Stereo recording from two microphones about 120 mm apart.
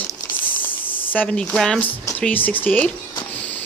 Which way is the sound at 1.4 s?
5° left (ahead or behind).